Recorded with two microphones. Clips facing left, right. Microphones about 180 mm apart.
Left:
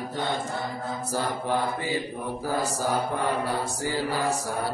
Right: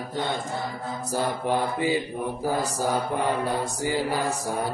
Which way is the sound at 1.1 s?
15° right (ahead or behind).